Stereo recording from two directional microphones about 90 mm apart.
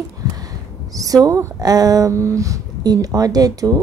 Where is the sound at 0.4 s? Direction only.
40° right (ahead or behind).